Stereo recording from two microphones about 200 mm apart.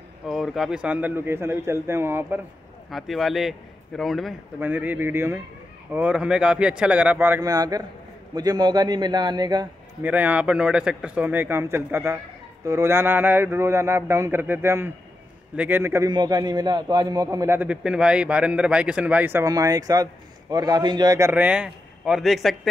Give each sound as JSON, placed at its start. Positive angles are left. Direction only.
{"t": 0.3, "sound": "a man's voice", "side_deg": 0}
{"t": 2.9, "sound": "a man's voice", "side_deg": 0}
{"t": 10.0, "sound": "a man's voice", "side_deg": -10}